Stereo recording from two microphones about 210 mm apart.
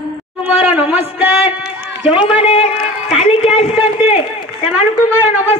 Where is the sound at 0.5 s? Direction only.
5° right (ahead or behind).